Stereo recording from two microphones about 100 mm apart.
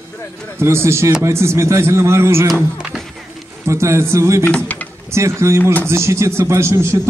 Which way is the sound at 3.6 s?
30° right (ahead or behind).